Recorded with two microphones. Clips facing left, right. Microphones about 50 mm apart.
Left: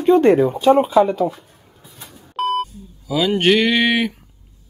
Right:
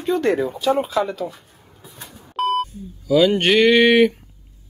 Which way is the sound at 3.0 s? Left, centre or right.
Centre.